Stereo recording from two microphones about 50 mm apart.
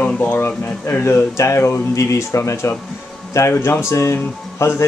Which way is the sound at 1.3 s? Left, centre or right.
Left.